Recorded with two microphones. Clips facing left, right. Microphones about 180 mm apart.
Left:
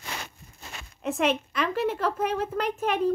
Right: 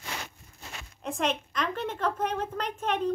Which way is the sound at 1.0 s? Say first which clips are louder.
Left 5 dB; 5° left (ahead or behind).